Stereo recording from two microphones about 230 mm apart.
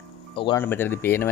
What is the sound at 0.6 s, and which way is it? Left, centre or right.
Speech, centre.